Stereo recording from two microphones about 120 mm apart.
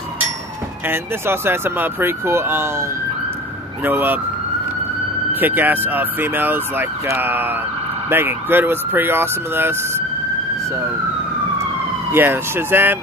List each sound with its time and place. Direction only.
0.8 s speech: 20° right (ahead or behind)
5.3 s speech: 15° right (ahead or behind)
12.1 s speech: 20° right (ahead or behind)